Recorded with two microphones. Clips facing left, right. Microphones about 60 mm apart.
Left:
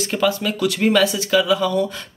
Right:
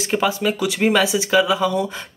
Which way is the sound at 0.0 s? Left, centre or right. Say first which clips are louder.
Even; centre.